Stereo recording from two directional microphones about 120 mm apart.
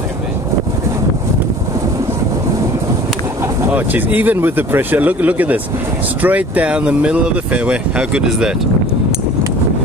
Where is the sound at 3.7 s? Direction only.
15° right (ahead or behind).